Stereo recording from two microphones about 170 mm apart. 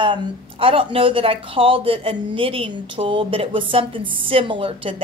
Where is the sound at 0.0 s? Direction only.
30° right (ahead or behind).